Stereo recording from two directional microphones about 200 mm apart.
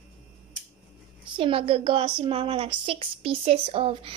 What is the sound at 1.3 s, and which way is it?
A woman's voice, 25° right (ahead or behind).